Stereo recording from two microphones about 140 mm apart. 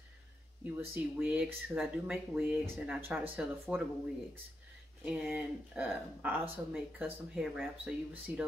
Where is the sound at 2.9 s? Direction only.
15° right (ahead or behind).